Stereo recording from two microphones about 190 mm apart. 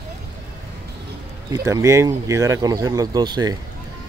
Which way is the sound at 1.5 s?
15° right (ahead or behind).